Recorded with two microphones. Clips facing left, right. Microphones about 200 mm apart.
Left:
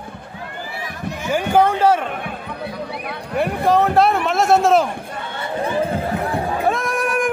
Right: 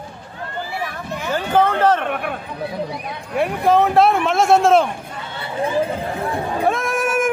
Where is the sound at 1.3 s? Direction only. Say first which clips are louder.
Left 2 dB; 10° left (ahead or behind).